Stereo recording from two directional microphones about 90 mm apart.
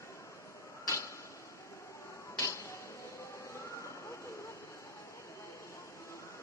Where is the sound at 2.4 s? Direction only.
35° left (ahead or behind).